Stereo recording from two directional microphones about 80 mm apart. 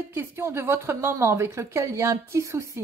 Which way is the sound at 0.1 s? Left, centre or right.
Right.